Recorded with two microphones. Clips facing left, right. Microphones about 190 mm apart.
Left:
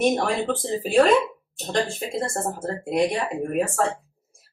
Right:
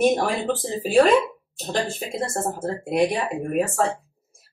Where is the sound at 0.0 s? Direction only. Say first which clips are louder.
Right 1 dB; 5° right (ahead or behind).